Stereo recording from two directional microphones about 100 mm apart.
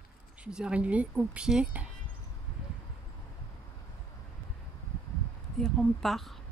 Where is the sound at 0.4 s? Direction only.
10° right (ahead or behind).